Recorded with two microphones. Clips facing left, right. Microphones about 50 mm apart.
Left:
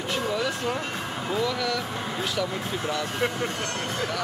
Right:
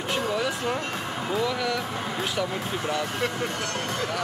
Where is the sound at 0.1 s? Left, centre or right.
Right.